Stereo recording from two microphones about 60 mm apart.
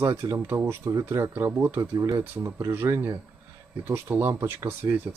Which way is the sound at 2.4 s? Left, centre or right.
Right.